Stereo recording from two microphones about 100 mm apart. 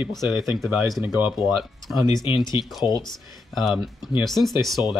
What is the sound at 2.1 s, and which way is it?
Speech, 55° left (ahead or behind).